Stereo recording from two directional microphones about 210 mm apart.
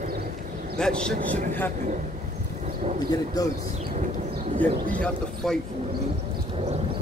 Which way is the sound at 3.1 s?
20° left (ahead or behind).